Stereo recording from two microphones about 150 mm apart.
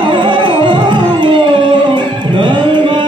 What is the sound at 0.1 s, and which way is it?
Music, 30° right (ahead or behind).